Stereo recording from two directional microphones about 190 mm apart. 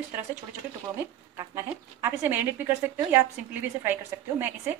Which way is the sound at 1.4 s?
15° right (ahead or behind).